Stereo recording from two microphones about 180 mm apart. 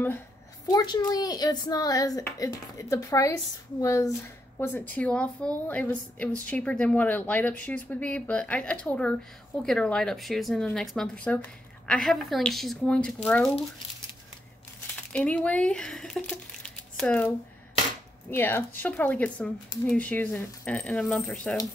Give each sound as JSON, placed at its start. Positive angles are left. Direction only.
{"t": 0.7, "sound": "a woman's voice", "side_deg": 20}
{"t": 15.1, "sound": "speech", "side_deg": 5}
{"t": 18.3, "sound": "speech", "side_deg": 10}